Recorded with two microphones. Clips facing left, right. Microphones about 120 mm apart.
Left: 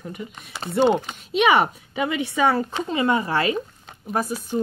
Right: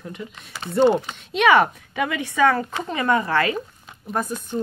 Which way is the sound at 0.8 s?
20° left (ahead or behind).